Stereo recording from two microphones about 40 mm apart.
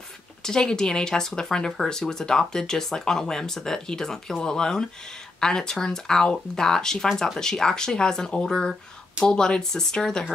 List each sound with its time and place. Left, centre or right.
0.4 s speech: centre